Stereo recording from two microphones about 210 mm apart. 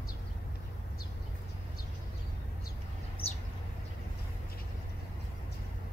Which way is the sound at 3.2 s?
30° left (ahead or behind).